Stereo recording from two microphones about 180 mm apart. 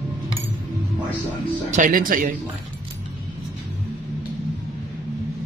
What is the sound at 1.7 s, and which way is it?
Speech, 50° right (ahead or behind).